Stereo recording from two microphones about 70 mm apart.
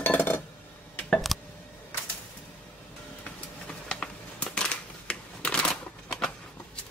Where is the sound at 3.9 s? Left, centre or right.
Centre.